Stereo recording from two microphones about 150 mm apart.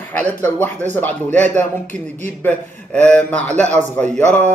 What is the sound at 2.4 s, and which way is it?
A man's voice, 10° left (ahead or behind).